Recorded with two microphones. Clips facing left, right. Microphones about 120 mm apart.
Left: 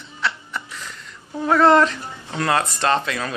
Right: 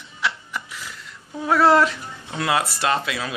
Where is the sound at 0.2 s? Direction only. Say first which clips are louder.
Left 1 dB; 10° right (ahead or behind).